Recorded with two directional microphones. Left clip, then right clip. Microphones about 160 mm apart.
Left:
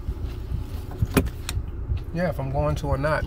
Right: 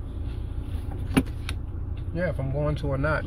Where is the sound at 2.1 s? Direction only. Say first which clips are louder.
Left 2 dB; 25° left (ahead or behind).